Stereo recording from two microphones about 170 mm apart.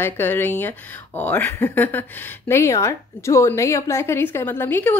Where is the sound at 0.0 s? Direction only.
10° left (ahead or behind).